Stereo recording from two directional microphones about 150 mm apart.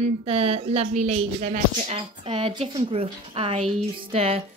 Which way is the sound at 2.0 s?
35° right (ahead or behind).